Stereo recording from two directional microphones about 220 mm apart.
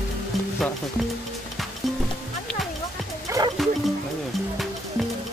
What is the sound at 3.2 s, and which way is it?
Music, 15° right (ahead or behind).